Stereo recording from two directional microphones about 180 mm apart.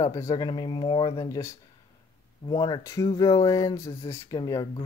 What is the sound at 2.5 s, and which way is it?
Speech, 25° left (ahead or behind).